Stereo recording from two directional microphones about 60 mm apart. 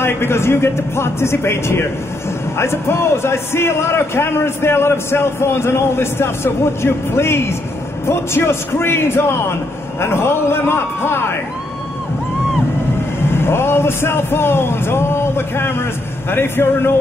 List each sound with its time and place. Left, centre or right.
0.0 s a man's voice: left
13.3 s a man's voice: left